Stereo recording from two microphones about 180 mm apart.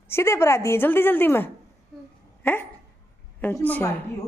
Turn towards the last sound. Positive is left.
turn(degrees=10)  # may be behind; listen again after turning